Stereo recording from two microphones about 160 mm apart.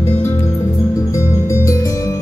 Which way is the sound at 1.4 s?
20° left (ahead or behind).